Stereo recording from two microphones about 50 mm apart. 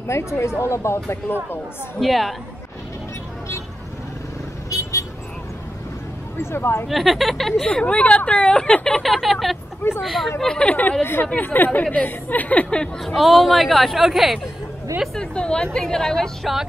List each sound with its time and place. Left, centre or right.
0.1 s a woman's voice: left
1.3 s speech: left
2.0 s speech: centre
6.4 s speech: left
6.9 s speech: centre
7.6 s speech: left
8.9 s speech: centre
10.4 s a woman's voice: centre
10.7 s speech: left
11.8 s speech: left
12.6 s a woman's voice: centre
13.0 s speech: centre
15.1 s a woman's voice: centre